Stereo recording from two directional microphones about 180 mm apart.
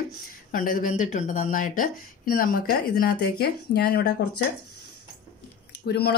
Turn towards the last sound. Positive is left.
turn(degrees=65)  # may be behind; listen again after turning